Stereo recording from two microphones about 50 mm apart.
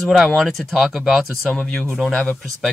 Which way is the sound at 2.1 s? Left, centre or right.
Left.